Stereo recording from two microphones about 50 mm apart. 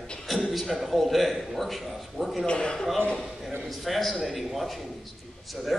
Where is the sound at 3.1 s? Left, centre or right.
Centre.